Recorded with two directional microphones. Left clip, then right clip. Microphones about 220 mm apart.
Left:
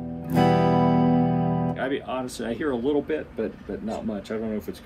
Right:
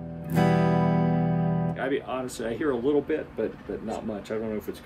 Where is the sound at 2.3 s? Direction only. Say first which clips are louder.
Right 2 dB; centre (ahead or behind).